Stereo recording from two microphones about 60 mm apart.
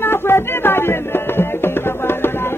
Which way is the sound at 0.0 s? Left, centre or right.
Left.